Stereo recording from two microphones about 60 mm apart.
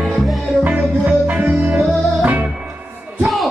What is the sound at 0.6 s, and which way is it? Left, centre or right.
Music, right.